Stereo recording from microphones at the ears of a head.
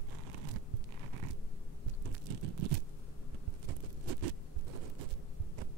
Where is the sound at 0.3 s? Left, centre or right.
Right.